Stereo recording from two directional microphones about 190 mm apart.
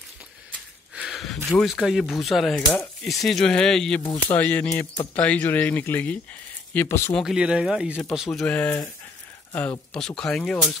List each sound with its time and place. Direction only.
0.9 s speech: centre (ahead or behind)
7.2 s speech: 5° right (ahead or behind)